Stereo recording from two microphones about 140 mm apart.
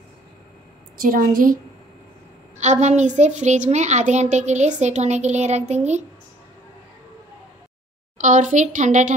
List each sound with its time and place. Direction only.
0.9 s a woman's voice: 80° right
2.5 s a woman's voice: 55° right (ahead or behind)
8.2 s a child's voice: 65° right (ahead or behind)